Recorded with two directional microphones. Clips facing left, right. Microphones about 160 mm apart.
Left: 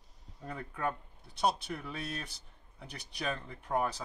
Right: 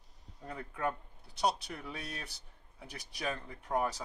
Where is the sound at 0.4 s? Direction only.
5° right (ahead or behind).